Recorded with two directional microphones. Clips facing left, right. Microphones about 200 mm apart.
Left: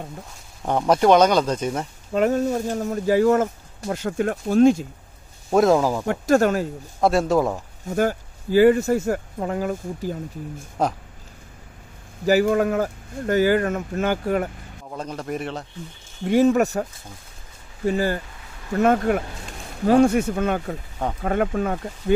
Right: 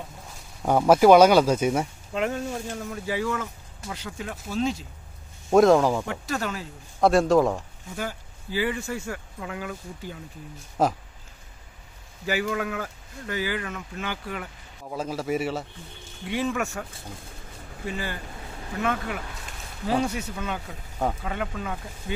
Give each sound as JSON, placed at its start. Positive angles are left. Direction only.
{"t": 0.6, "sound": "speech", "side_deg": -5}
{"t": 2.1, "sound": "speech", "side_deg": 40}
{"t": 5.5, "sound": "a man's voice", "side_deg": 0}
{"t": 6.0, "sound": "speech", "side_deg": 45}
{"t": 7.0, "sound": "a man's voice", "side_deg": 0}
{"t": 7.9, "sound": "speech", "side_deg": 50}
{"t": 10.8, "sound": "a man's voice", "side_deg": -5}
{"t": 12.3, "sound": "speech", "side_deg": 40}
{"t": 14.9, "sound": "a man's voice", "side_deg": -5}
{"t": 16.3, "sound": "speech", "side_deg": 40}
{"t": 17.8, "sound": "speech", "side_deg": 40}